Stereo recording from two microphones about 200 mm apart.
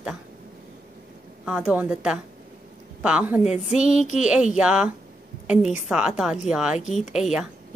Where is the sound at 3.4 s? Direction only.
35° left (ahead or behind).